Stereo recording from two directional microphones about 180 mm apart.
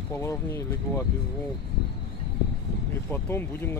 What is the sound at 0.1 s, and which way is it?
Speech, 15° left (ahead or behind).